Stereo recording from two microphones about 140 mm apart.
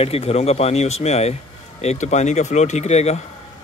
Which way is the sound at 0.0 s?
45° left (ahead or behind).